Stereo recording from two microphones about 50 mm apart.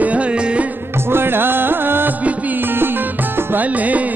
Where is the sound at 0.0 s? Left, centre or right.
Right.